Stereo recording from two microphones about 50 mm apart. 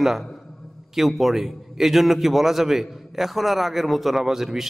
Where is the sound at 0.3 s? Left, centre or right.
Centre.